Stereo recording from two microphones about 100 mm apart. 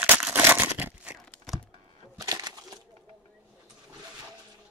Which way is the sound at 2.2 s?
40° right (ahead or behind).